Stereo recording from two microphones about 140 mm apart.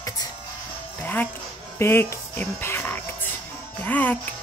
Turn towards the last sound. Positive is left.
turn(degrees=10)  # may be behind; listen again after turning